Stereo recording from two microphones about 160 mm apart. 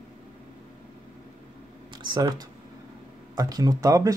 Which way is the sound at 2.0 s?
25° right (ahead or behind).